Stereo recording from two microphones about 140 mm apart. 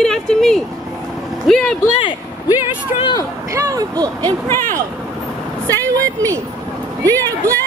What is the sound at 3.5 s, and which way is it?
Speech, 25° right (ahead or behind).